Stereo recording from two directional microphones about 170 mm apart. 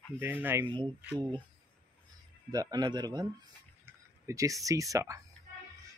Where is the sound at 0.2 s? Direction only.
10° right (ahead or behind).